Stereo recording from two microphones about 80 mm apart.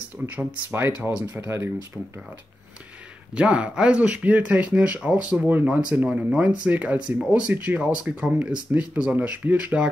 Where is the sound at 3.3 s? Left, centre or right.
Centre.